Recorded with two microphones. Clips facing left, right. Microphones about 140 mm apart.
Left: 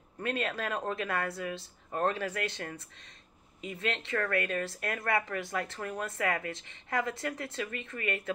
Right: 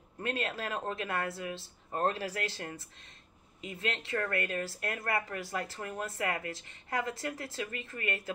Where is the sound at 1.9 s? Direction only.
35° right (ahead or behind).